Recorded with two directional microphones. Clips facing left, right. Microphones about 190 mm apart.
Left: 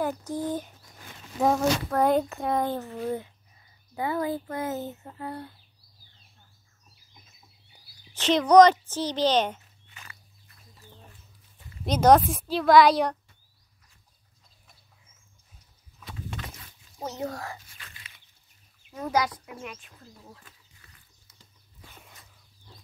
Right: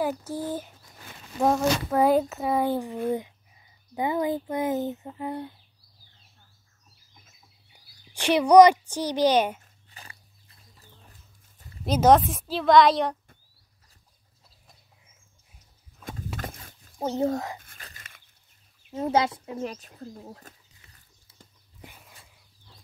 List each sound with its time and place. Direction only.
0.3 s a child's voice: 10° right (ahead or behind)
8.1 s a child's voice: 10° right (ahead or behind)
9.8 s a sound: 35° right (ahead or behind)
11.8 s a woman's voice: 5° right (ahead or behind)
16.0 s a sound: 50° right (ahead or behind)
17.0 s speech: 30° right (ahead or behind)
17.6 s a sound: 55° right (ahead or behind)
17.8 s livestock: 45° right (ahead or behind)
18.9 s speech: 25° right (ahead or behind); by 20.5 s 40° right (ahead or behind)